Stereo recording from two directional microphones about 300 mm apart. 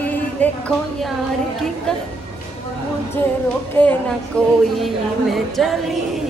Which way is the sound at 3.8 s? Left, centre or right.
Centre.